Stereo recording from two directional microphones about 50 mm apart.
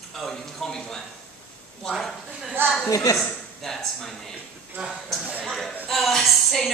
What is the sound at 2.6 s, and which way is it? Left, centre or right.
Speech, right.